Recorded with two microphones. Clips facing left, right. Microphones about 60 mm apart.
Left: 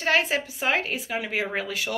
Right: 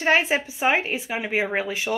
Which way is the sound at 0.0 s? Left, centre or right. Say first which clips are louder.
Right 3 dB; right.